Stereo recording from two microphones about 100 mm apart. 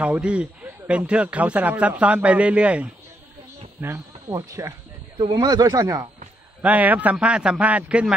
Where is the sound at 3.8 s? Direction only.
30° right (ahead or behind).